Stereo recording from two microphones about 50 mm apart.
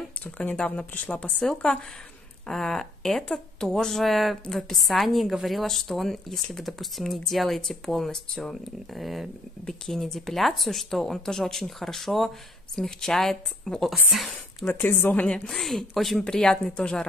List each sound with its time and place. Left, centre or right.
0.6 s speech: left
1.4 s a woman's voice: centre
9.7 s a woman's voice: centre
14.7 s a woman's voice: left
15.2 s speech: centre
15.5 s a woman's voice: centre